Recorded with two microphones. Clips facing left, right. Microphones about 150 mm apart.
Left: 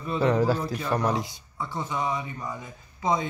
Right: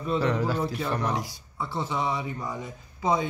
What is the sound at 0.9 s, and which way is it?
Speech, 35° left (ahead or behind).